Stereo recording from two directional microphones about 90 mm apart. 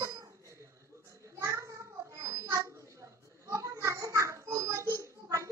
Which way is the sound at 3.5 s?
30° right (ahead or behind).